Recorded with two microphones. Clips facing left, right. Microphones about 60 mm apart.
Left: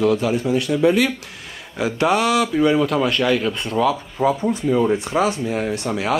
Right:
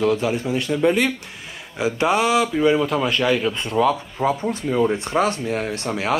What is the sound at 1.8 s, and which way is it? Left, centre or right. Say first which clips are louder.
Speech: left 1 dB; left.